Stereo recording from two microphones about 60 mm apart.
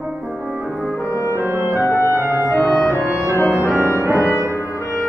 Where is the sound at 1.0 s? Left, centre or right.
Left.